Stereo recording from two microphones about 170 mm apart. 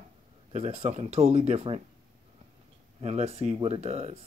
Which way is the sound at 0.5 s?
40° right (ahead or behind).